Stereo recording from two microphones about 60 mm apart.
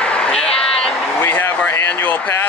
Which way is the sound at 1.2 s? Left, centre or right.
Left.